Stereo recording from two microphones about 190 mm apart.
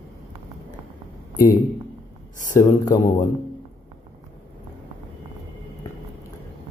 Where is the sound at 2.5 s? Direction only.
20° left (ahead or behind).